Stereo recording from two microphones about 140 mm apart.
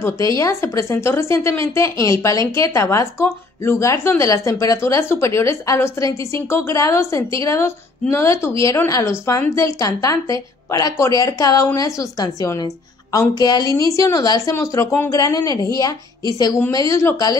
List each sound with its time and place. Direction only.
0.0 s speech: 20° left (ahead or behind)